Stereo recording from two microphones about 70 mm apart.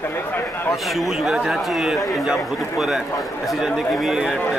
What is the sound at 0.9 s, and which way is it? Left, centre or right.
A man's voice, centre.